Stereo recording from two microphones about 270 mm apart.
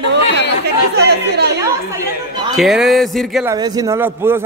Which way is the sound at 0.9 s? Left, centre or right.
Right.